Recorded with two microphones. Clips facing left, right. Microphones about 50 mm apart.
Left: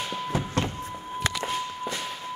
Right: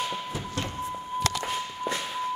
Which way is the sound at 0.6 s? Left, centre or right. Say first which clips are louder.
Left 5 dB; left.